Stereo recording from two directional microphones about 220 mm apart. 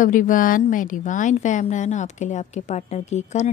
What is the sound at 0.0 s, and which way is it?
A woman's voice, 35° left (ahead or behind).